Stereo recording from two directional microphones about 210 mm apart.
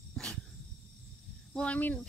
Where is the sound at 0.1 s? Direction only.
5° left (ahead or behind).